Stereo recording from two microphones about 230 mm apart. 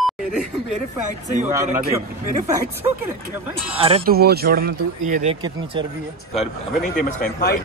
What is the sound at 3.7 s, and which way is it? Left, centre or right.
Speech, right.